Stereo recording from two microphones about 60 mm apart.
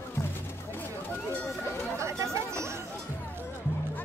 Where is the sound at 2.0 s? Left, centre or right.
Right.